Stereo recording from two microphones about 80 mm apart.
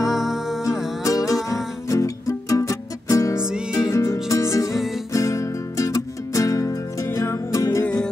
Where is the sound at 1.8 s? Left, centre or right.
Left.